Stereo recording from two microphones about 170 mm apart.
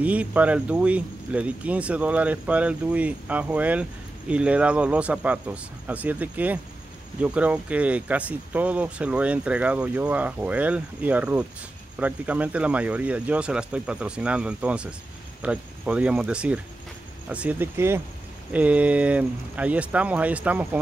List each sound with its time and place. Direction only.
0.0 s speech: 10° right (ahead or behind)